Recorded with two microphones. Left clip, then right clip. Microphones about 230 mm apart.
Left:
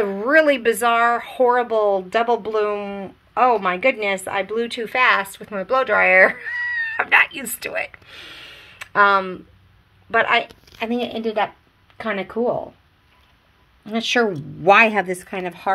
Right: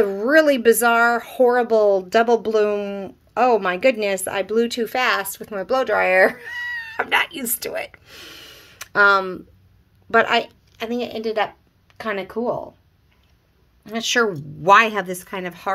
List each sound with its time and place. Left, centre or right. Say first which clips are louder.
0.0 s speech: even; right
10.8 s a woman's voice: left 1 dB; centre
13.8 s a woman's voice: even; centre